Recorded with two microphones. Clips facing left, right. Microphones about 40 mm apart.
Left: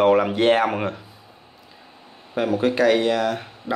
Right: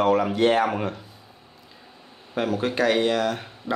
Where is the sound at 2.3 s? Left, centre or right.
Centre.